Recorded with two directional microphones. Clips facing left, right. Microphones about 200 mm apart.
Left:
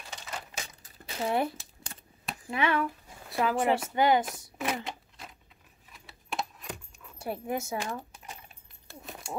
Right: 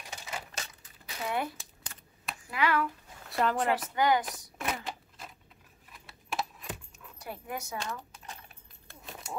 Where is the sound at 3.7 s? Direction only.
25° left (ahead or behind).